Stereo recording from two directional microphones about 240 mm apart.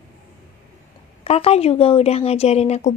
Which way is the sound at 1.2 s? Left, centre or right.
Left.